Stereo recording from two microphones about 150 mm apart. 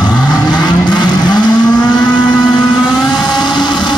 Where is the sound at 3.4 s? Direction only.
30° left (ahead or behind).